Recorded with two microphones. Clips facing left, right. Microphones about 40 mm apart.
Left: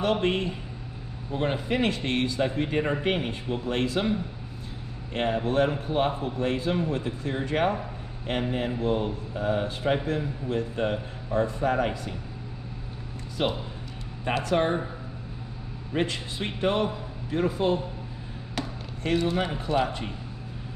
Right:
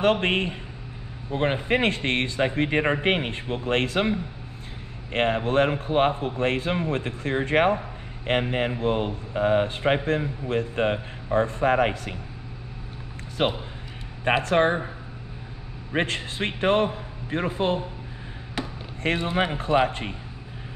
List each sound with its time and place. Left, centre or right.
0.0 s speech: right
5.1 s speech: right
13.4 s speech: right
15.9 s speech: right
19.0 s speech: right